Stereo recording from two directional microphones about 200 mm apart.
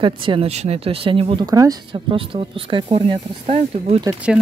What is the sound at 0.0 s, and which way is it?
Speech, 25° right (ahead or behind).